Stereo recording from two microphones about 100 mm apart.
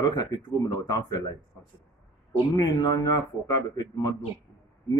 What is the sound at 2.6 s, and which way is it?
A man's voice, 40° left (ahead or behind).